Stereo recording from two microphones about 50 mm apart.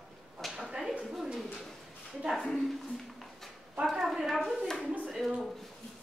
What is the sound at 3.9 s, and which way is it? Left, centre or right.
A woman's voice, centre.